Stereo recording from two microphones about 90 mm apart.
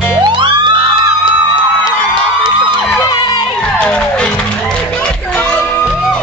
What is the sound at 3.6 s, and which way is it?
Music, 10° left (ahead or behind).